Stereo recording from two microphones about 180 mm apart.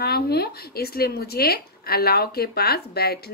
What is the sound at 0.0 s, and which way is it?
Speech, 60° left (ahead or behind).